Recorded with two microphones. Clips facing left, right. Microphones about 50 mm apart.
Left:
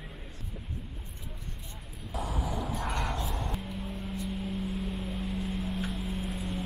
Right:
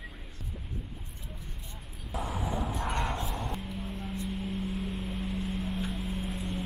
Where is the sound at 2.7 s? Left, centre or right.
Right.